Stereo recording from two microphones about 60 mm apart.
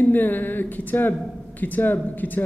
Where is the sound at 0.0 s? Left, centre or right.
Left.